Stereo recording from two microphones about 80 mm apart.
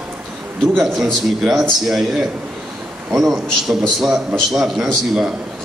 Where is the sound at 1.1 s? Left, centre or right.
Centre.